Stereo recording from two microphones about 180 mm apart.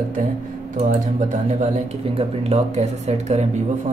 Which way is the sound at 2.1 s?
35° right (ahead or behind).